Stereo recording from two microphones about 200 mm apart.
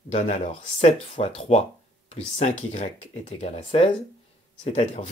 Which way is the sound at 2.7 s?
35° left (ahead or behind).